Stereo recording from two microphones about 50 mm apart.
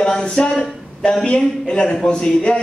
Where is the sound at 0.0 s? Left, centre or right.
Centre.